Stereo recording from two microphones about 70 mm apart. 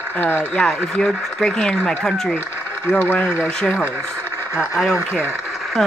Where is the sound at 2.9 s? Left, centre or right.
Left.